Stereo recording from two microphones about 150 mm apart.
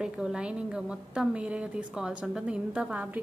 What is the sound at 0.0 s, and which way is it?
A woman's voice, 5° right (ahead or behind).